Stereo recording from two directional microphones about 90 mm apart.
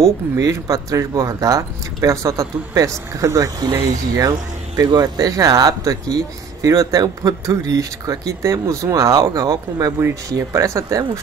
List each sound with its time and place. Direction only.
0.0 s speech: 35° right (ahead or behind)